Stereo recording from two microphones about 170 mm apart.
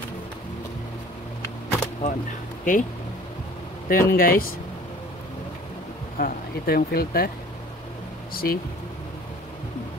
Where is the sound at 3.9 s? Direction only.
60° left (ahead or behind).